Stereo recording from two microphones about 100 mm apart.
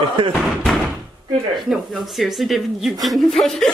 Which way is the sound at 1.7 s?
Centre (ahead or behind).